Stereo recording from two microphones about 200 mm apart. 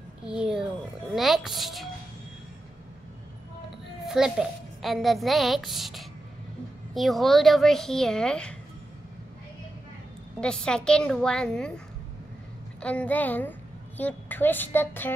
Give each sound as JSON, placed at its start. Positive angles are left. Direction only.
{"t": 0.3, "sound": "a woman's voice", "side_deg": -5}
{"t": 4.0, "sound": "a child's voice", "side_deg": 0}
{"t": 10.4, "sound": "a child's voice", "side_deg": 5}
{"t": 12.8, "sound": "a woman's voice", "side_deg": 5}